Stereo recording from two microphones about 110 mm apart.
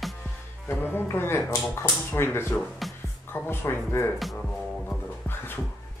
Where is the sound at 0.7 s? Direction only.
20° left (ahead or behind).